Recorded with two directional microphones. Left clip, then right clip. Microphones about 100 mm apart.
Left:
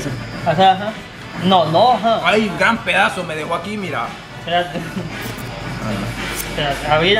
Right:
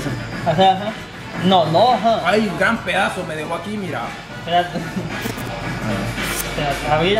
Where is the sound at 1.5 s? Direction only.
15° right (ahead or behind).